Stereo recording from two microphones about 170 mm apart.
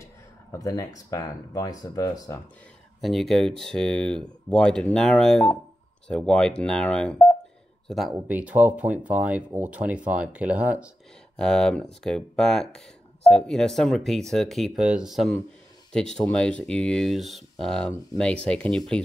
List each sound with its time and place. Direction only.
0.0 s speech: 20° left (ahead or behind)
3.0 s speech: centre (ahead or behind)
8.1 s speech: 10° right (ahead or behind)
11.3 s speech: 5° left (ahead or behind)